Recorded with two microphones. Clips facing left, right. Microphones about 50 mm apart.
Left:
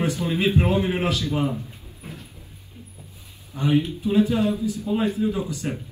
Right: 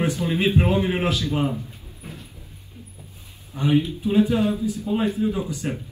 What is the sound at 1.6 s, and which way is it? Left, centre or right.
Dog, left.